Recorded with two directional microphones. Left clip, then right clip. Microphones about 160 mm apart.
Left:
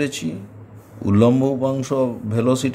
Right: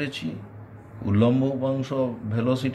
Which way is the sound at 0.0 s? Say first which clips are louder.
Left 7 dB; 55° left (ahead or behind).